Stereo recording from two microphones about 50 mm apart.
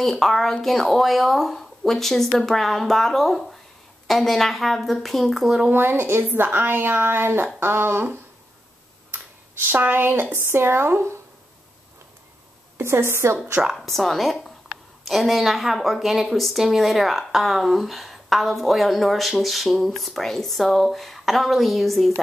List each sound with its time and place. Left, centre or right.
0.0 s speech: centre
5.7 s speech: right
9.8 s speech: right
12.7 s a woman's voice: right
13.7 s a woman's voice: centre